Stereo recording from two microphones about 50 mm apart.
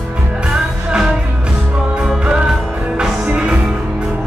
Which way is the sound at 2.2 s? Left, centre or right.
Right.